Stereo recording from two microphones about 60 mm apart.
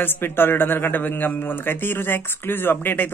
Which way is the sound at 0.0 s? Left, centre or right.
Left.